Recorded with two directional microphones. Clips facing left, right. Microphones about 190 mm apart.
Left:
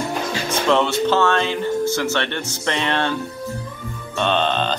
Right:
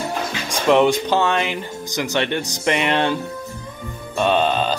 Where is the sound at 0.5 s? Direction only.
15° right (ahead or behind).